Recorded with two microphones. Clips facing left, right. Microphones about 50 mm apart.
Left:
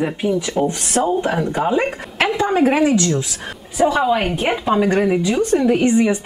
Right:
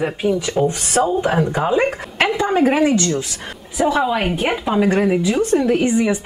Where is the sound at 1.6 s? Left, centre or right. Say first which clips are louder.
Even; centre.